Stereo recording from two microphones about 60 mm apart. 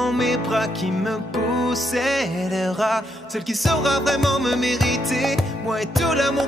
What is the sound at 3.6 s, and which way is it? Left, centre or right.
Music, centre.